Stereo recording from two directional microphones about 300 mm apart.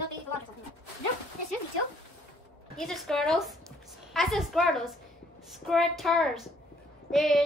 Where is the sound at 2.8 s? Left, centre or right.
Centre.